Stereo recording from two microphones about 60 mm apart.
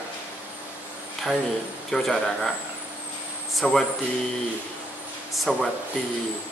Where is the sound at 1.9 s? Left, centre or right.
Centre.